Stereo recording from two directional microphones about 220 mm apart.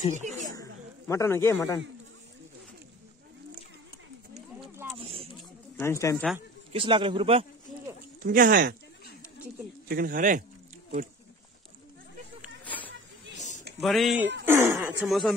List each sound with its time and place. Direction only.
0.1 s a sound: 35° right (ahead or behind)
0.6 s snake: 15° left (ahead or behind)
4.6 s a sound: 10° right (ahead or behind)
4.9 s a sound: 25° right (ahead or behind)
5.8 s speech: 10° left (ahead or behind)
6.7 s a man's voice: 25° right (ahead or behind)
7.7 s sheep: centre (ahead or behind)
8.2 s speech: 40° right (ahead or behind)
9.8 s speech: 40° right (ahead or behind)
13.7 s speech: centre (ahead or behind)
14.4 s speech: 10° right (ahead or behind)
14.8 s speech: centre (ahead or behind)